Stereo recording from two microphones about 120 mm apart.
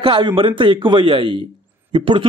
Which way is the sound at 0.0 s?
45° right (ahead or behind).